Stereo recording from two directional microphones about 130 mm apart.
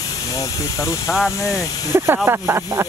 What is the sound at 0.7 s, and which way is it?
Speech, 25° left (ahead or behind).